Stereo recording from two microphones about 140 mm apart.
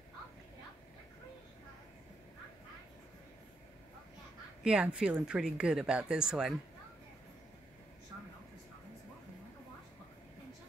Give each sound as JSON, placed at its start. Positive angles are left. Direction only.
{"t": 4.6, "sound": "speech", "side_deg": -5}